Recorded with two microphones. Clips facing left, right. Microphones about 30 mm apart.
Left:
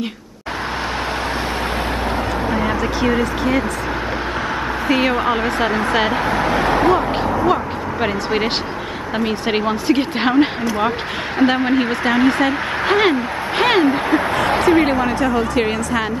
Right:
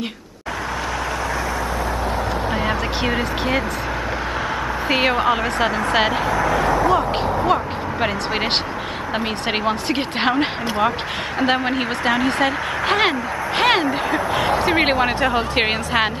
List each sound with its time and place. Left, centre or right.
3.1 s speech: centre
4.8 s a woman's voice: centre
5.1 s speech: centre
6.2 s a sound: left
7.4 s speech: centre
14.7 s a woman's voice: right